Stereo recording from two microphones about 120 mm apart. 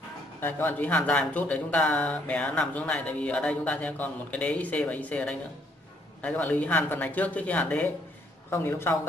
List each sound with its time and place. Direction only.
0.4 s a man's voice: 15° left (ahead or behind)